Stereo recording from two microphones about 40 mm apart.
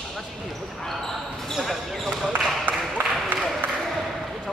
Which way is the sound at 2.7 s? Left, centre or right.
Right.